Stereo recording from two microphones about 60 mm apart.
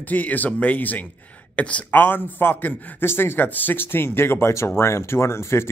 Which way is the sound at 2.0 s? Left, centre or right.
Left.